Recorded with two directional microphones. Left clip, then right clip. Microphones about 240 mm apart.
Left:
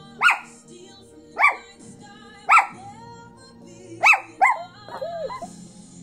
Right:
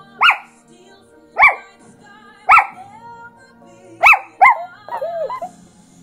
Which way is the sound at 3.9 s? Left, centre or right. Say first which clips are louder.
Right 6 dB; centre.